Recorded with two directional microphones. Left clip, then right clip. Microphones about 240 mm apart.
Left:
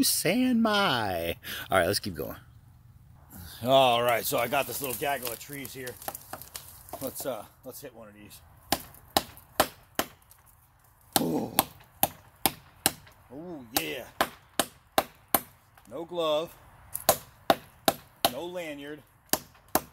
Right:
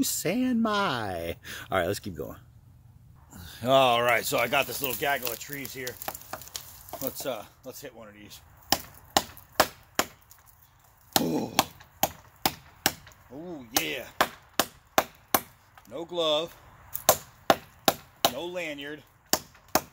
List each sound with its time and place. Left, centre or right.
0.0 s speech: centre
8.6 s chop: centre
11.2 s a sound: centre
11.5 s chop: centre
13.3 s speech: centre
14.1 s chop: centre
15.9 s speech: centre
17.0 s chop: centre
19.7 s chop: centre